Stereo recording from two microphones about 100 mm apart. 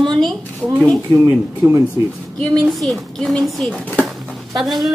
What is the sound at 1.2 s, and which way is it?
Speech, 15° right (ahead or behind).